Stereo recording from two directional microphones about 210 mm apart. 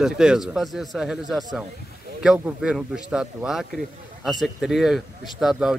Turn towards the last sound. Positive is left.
turn(degrees=0)  # may be behind; listen again after turning